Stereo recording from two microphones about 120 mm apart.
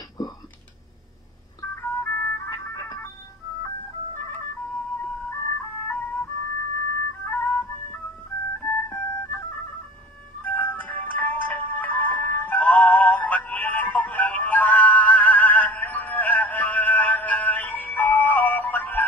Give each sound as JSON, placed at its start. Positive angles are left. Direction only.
{"t": 1.8, "sound": "music", "side_deg": 15}
{"t": 2.5, "sound": "music", "side_deg": 25}
{"t": 5.9, "sound": "music", "side_deg": 15}
{"t": 7.2, "sound": "music", "side_deg": 15}
{"t": 10.4, "sound": "music", "side_deg": 15}